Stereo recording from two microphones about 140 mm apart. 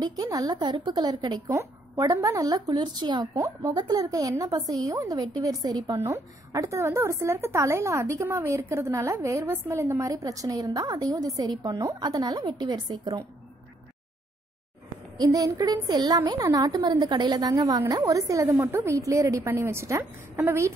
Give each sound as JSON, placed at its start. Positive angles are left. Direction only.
{"t": 0.0, "sound": "a woman's voice", "side_deg": -30}
{"t": 15.1, "sound": "a woman's voice", "side_deg": -25}